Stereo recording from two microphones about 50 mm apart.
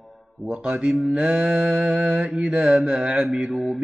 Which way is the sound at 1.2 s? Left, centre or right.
Centre.